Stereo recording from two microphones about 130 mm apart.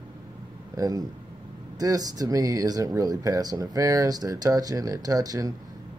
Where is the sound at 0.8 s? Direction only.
25° right (ahead or behind).